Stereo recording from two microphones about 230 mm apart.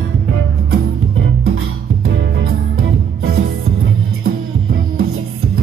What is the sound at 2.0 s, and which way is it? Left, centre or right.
Music, right.